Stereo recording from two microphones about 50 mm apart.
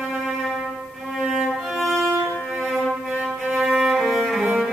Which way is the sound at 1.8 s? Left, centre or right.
Centre.